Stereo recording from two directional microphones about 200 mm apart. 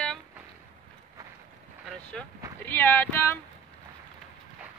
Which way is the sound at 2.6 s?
10° left (ahead or behind).